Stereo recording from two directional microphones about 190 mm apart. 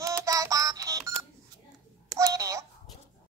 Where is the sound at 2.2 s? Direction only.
15° right (ahead or behind).